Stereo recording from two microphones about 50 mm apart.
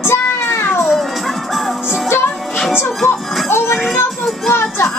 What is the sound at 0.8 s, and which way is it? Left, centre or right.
Music, centre.